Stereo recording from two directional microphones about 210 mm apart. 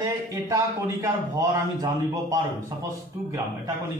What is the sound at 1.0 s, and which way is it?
A man's voice, 15° right (ahead or behind).